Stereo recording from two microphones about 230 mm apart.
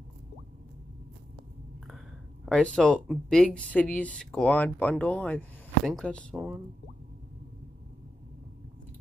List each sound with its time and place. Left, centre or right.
2.4 s speech: centre
6.3 s speech: centre